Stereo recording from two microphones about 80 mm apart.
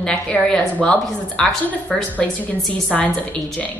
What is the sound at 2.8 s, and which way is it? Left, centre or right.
Speech, centre.